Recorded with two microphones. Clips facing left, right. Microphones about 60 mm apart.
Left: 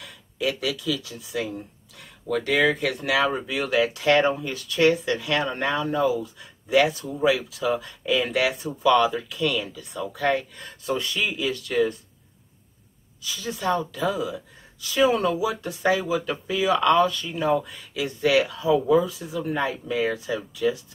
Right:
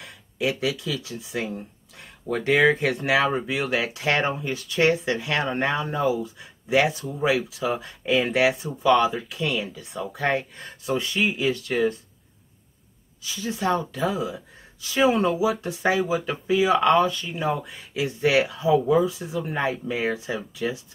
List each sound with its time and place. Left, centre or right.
0.0 s speech: right
13.2 s speech: right